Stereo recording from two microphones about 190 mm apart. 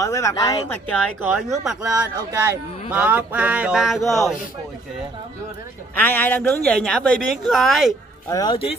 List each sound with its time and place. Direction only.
0.0 s speech: 15° left (ahead or behind)
1.2 s a woman's voice: 5° right (ahead or behind)
2.1 s speech: 15° right (ahead or behind)
5.9 s a woman's voice: 10° left (ahead or behind)
8.3 s speech: 20° left (ahead or behind)